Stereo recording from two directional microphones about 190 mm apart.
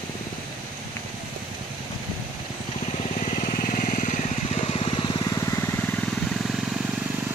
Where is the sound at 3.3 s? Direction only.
40° left (ahead or behind); by 6.5 s centre (ahead or behind).